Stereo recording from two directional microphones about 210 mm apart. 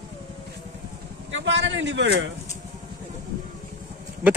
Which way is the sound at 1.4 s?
60° right (ahead or behind).